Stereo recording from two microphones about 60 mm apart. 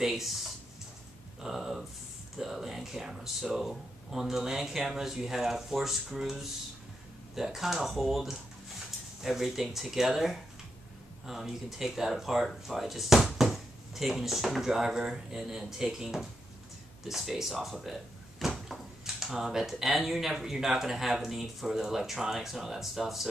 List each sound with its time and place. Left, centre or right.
0.0 s speech: centre